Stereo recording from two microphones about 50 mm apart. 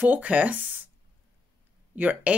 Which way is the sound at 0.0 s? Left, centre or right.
Right.